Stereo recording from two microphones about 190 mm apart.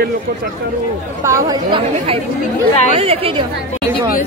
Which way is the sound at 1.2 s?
15° right (ahead or behind).